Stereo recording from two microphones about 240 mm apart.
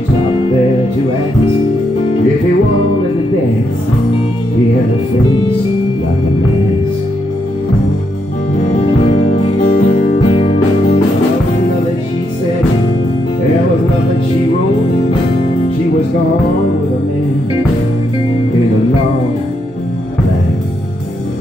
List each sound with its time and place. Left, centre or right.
9.8 s music: left